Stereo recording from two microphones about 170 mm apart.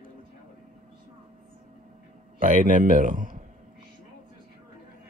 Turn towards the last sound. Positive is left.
turn(degrees=-50)  # may be behind; listen again after turning